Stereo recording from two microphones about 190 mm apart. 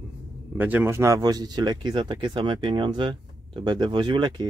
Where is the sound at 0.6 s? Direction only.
10° right (ahead or behind).